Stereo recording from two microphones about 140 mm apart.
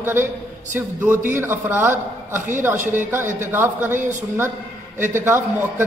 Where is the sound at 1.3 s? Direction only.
15° right (ahead or behind).